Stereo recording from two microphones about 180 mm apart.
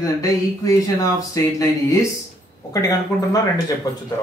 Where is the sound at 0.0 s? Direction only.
15° left (ahead or behind).